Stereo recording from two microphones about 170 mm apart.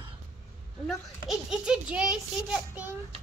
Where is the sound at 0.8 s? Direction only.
Centre (ahead or behind).